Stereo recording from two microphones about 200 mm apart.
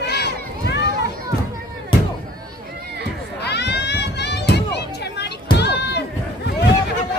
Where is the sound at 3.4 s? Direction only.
55° left (ahead or behind).